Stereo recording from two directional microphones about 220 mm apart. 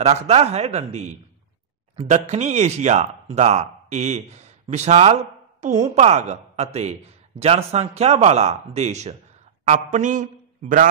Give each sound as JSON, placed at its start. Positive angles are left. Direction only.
{"t": 0.0, "sound": "a man's voice", "side_deg": -30}